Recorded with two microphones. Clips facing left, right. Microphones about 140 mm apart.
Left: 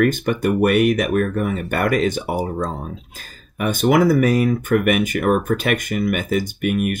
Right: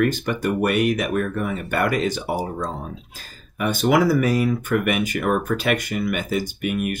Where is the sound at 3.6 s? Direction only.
50° left (ahead or behind).